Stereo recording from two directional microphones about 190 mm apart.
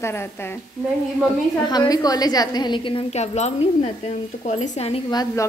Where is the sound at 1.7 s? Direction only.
20° left (ahead or behind).